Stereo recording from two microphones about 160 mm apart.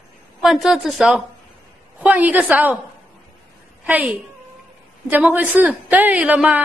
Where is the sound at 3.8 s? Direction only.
10° right (ahead or behind).